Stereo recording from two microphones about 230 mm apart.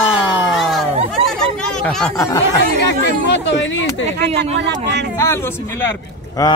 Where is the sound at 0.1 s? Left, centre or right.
Centre.